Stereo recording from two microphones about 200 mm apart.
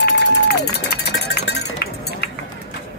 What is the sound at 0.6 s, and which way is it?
Cowbell, 55° left (ahead or behind).